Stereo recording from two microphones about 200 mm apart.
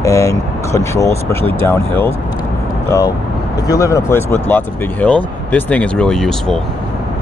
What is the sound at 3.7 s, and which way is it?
Speech, 15° left (ahead or behind).